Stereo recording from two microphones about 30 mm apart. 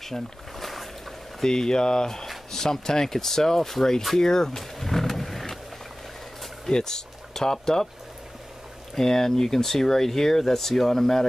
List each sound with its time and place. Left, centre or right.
0.0 s boat: centre
1.4 s speech: left
4.7 s roaring cats: centre
6.7 s speech: left
8.9 s speech: centre